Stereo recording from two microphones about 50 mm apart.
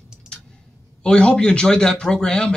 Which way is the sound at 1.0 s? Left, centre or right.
Centre.